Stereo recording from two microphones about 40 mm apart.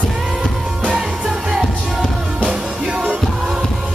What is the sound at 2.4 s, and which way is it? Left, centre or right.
Music, right.